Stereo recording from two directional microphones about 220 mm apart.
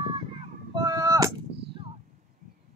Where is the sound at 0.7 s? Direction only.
20° right (ahead or behind).